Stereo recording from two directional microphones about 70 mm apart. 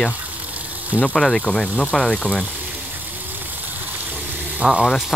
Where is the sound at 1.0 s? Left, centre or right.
Centre.